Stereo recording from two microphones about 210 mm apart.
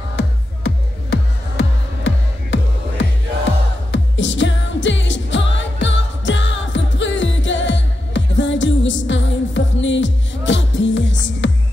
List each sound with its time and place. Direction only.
0.7 s music: 55° left (ahead or behind)
3.9 s music: 60° left (ahead or behind)